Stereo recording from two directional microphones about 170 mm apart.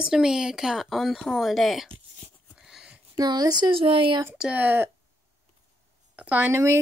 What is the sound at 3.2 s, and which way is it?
Speech, 25° right (ahead or behind).